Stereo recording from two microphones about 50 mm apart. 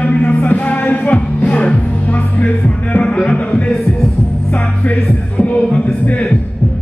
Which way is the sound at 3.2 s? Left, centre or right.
Centre.